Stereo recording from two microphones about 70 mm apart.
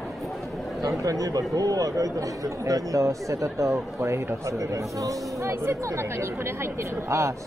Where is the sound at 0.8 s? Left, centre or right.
Right.